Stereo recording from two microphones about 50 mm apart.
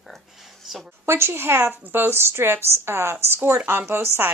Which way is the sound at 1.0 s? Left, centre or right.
Right.